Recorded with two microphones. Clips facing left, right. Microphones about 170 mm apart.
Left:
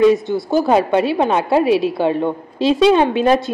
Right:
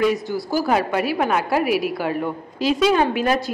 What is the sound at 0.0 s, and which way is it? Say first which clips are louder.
A woman's voice: left 7 dB; 25° left (ahead or behind).